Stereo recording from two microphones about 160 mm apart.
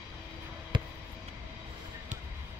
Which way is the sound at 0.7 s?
30° right (ahead or behind).